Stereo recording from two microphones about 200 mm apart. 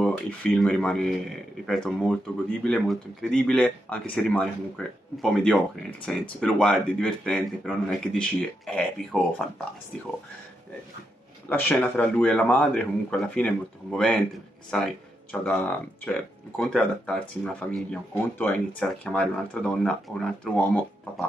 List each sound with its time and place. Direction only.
0.0 s speech: 5° left (ahead or behind)
11.4 s speech: 5° left (ahead or behind)